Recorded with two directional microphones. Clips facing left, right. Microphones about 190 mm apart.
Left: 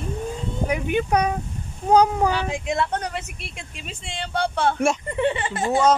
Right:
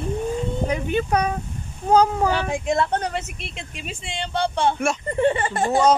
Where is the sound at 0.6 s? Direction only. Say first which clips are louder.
Left 3 dB; 15° left (ahead or behind).